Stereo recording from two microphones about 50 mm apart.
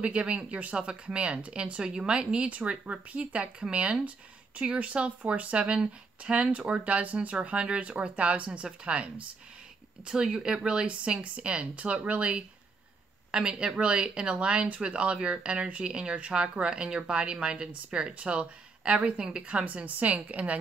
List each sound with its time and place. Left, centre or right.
0.0 s speech: right